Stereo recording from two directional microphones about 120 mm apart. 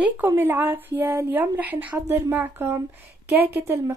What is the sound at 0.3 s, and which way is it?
Speech, 20° right (ahead or behind).